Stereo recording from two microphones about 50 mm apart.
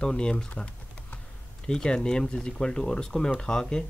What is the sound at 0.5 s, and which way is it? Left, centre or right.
Typing, left.